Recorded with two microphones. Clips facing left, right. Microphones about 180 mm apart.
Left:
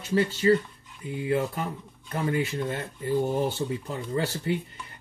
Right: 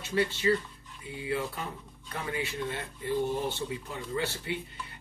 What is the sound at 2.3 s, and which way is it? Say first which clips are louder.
Speech: left 2 dB; 45° left (ahead or behind).